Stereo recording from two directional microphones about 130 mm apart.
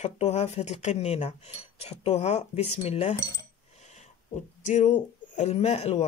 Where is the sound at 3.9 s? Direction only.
65° left (ahead or behind).